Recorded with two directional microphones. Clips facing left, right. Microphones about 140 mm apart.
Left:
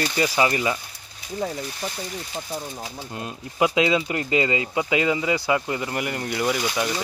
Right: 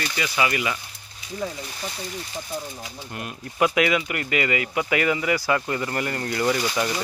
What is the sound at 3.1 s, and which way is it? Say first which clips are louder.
Speech: even; 20° left (ahead or behind).